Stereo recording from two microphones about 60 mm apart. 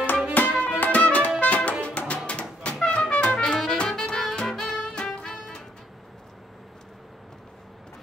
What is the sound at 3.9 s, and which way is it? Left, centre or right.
Music, centre.